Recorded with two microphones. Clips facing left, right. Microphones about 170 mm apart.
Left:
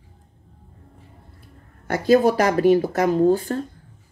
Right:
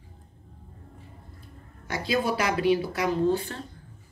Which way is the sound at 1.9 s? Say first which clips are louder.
Left 10 dB; 45° left (ahead or behind).